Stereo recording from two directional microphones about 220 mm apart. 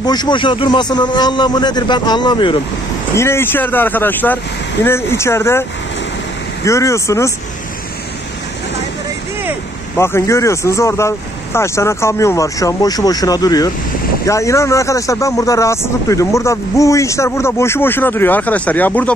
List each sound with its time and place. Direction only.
0.0 s a man's voice: 20° left (ahead or behind)
3.2 s speech: 10° left (ahead or behind)
9.9 s speech: 10° left (ahead or behind)